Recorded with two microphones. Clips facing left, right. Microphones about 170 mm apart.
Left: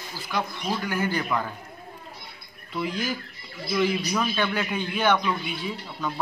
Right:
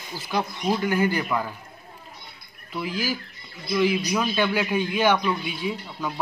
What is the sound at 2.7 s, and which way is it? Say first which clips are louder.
A man's voice: even; 5° right (ahead or behind).